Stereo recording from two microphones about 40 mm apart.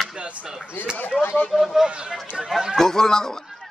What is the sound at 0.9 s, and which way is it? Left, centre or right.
Speech, left.